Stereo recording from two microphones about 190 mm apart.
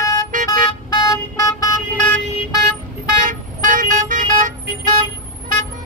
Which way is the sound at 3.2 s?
45° right (ahead or behind).